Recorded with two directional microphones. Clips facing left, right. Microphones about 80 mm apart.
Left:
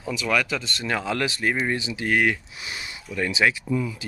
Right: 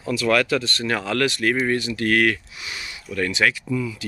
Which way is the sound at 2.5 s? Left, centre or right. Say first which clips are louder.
Right 1 dB; left.